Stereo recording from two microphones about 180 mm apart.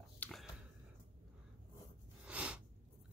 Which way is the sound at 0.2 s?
Centre (ahead or behind).